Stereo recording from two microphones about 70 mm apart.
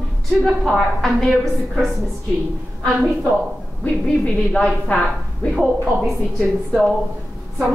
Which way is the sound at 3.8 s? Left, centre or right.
Centre.